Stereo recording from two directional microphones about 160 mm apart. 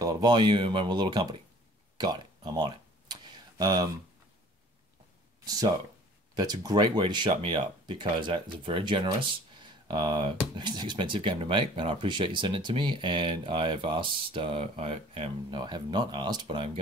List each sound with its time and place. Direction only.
0.0 s speech: 25° right (ahead or behind)
2.0 s tick-tock: 25° right (ahead or behind)
5.4 s speech: 20° right (ahead or behind)